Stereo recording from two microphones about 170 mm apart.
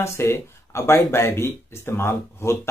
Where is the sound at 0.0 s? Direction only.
15° left (ahead or behind).